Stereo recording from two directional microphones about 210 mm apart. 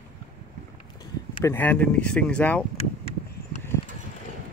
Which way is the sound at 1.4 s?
10° left (ahead or behind).